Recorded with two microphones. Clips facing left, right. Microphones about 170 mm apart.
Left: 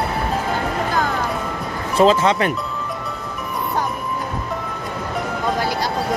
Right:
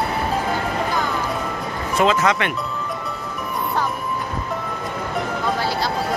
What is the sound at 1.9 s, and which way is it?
Speech, 30° left (ahead or behind).